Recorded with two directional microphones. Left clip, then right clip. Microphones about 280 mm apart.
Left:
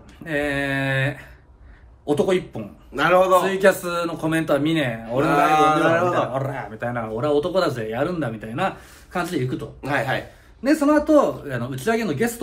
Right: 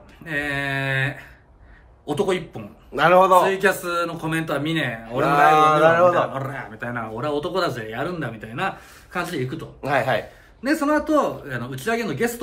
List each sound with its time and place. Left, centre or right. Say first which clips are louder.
0.2 s a sound: left 2 dB; centre
2.0 s speech: left 3 dB; centre
2.9 s mantra: right 2 dB; centre
3.4 s speech: left 2 dB; centre
5.2 s mantra: right 2 dB; centre
6.3 s speech: left 3 dB; centre
9.8 s speech: right 3 dB; centre
10.6 s speech: left 3 dB; centre